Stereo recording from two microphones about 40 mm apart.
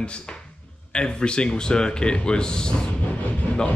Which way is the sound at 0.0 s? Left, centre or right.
Left.